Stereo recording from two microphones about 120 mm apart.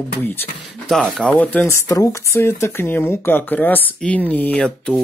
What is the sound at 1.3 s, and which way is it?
Speech, 15° left (ahead or behind).